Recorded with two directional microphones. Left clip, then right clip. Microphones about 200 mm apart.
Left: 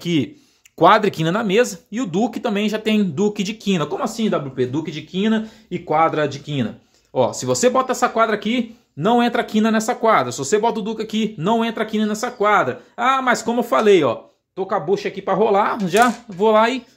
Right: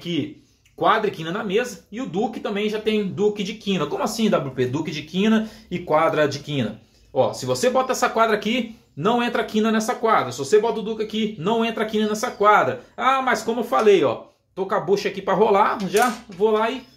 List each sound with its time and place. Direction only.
0.7 s speech: 65° left (ahead or behind); by 6.7 s 40° left (ahead or behind)
7.2 s speech: 55° left (ahead or behind)
14.7 s speech: 25° left (ahead or behind)
15.9 s speech: 55° left (ahead or behind)